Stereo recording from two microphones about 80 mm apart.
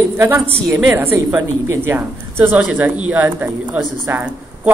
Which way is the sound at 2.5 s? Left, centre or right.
Right.